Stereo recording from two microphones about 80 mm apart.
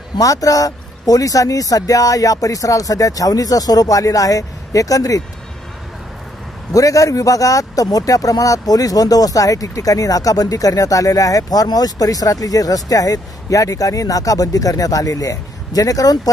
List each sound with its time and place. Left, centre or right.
0.2 s speech: left
6.7 s speech: left